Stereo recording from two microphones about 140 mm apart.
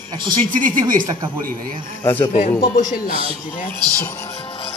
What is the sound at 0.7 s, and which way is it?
Speech, 75° right (ahead or behind).